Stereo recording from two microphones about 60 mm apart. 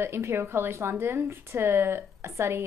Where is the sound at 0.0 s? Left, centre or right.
Right.